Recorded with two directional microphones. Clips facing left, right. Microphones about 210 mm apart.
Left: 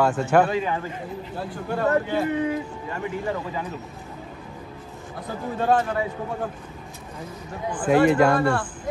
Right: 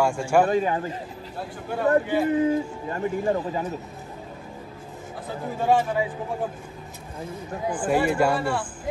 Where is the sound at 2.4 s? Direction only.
35° right (ahead or behind).